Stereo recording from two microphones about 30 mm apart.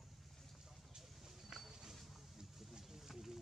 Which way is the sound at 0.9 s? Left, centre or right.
Centre.